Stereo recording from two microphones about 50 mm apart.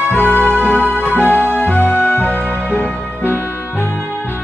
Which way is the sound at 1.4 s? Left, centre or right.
Left.